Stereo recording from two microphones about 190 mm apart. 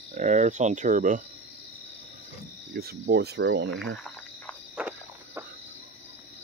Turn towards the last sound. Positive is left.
turn(degrees=-5)  # may be behind; listen again after turning